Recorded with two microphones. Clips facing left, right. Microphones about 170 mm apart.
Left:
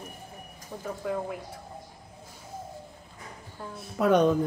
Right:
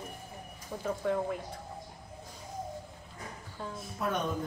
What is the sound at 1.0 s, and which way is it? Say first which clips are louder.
Speech: even; 5° left (ahead or behind).